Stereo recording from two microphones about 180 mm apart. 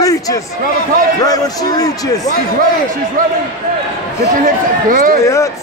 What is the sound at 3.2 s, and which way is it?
Speech, 50° right (ahead or behind).